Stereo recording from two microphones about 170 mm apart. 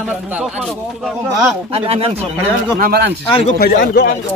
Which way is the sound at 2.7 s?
60° right (ahead or behind).